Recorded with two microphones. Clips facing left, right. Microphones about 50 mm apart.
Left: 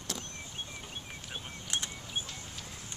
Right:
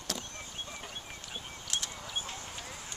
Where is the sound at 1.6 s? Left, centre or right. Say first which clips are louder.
Left 1 dB; left.